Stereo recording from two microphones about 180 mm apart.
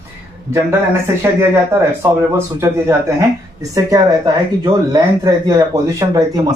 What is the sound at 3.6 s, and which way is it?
Speech, 20° right (ahead or behind).